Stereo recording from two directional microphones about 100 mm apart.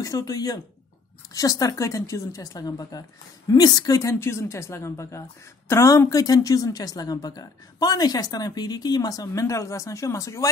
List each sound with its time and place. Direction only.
0.0 s a woman's voice: 35° left (ahead or behind)